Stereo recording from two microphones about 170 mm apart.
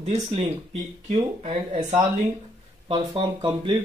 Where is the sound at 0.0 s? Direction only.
35° right (ahead or behind).